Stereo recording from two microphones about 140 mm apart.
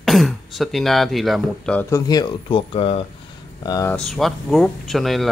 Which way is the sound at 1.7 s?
20° left (ahead or behind).